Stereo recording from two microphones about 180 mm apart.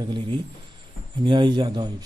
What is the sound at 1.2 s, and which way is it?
Speech, 25° right (ahead or behind).